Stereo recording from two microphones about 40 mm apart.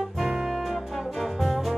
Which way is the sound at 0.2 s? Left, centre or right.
Centre.